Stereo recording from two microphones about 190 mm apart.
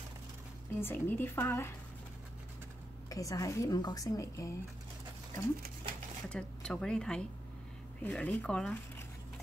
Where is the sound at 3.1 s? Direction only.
20° left (ahead or behind).